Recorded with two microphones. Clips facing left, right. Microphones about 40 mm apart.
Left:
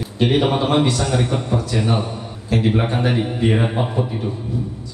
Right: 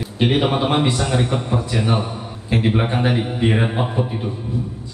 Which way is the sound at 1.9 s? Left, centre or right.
Centre.